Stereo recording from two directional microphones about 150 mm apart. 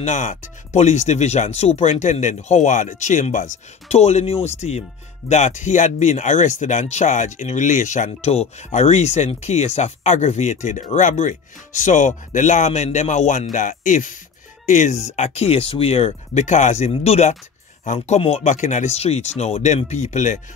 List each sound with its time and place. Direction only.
0.0 s speech: 55° left (ahead or behind)